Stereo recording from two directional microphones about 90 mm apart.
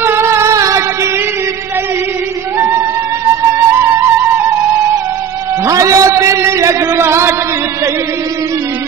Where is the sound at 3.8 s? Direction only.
30° right (ahead or behind).